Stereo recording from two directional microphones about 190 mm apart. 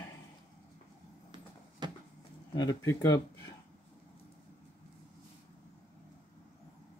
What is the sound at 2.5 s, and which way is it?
Speech, 20° left (ahead or behind).